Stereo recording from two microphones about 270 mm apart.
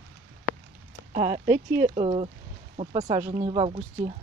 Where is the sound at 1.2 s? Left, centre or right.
Right.